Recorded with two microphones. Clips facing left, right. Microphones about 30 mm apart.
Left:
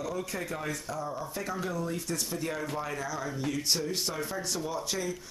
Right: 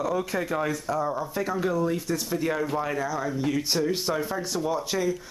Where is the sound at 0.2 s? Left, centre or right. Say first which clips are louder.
Right 8 dB; centre.